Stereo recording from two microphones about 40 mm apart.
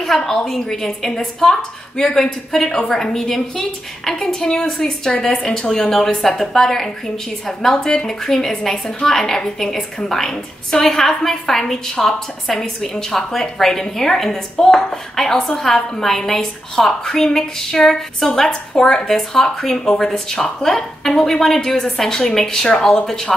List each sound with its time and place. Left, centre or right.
0.3 s a woman's voice: centre